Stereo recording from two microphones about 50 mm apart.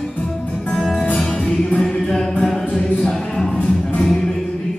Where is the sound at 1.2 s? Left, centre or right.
Centre.